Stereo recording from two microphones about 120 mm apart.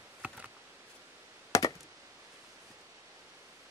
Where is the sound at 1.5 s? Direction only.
25° left (ahead or behind).